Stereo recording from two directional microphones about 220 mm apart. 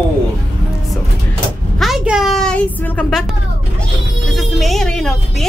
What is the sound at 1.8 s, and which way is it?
Speech, centre (ahead or behind).